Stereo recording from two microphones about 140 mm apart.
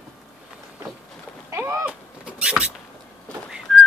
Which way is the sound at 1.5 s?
20° right (ahead or behind).